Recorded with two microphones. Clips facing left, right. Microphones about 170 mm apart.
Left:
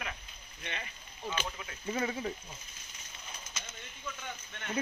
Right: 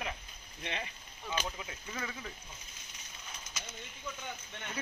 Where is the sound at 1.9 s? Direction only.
30° left (ahead or behind).